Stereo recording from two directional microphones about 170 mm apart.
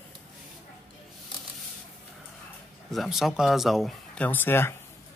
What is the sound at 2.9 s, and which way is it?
Speech, centre (ahead or behind).